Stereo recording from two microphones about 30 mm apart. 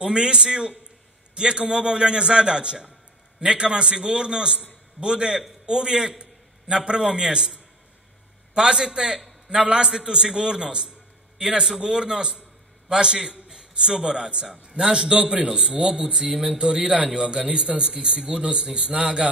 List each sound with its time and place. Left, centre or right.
0.0 s a man's voice: right
8.5 s a man's voice: right
15.1 s a man's voice: right
15.4 s a man's voice: right